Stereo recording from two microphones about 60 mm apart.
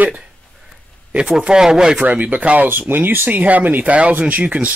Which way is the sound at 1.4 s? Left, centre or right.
Centre.